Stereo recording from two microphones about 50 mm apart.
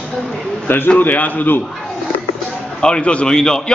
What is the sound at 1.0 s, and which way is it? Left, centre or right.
Speech, left.